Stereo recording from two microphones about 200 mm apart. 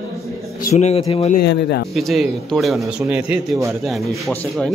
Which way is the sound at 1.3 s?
55° left (ahead or behind).